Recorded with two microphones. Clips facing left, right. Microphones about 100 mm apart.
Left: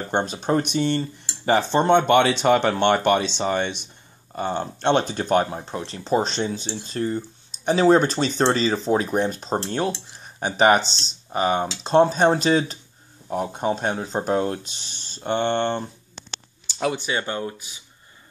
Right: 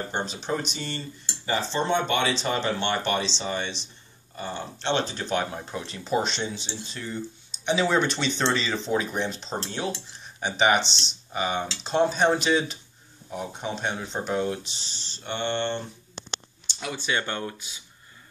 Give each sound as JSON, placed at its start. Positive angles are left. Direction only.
{"t": 0.1, "sound": "speech", "side_deg": 50}
{"t": 5.7, "sound": "speech", "side_deg": 30}
{"t": 13.3, "sound": "speech", "side_deg": 50}
{"t": 16.9, "sound": "speech", "side_deg": 20}